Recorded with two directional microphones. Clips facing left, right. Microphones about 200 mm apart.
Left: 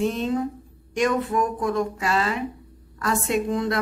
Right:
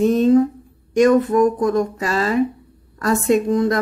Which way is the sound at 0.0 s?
40° right (ahead or behind).